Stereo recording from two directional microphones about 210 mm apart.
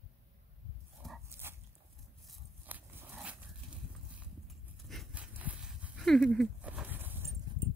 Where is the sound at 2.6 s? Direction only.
10° right (ahead or behind).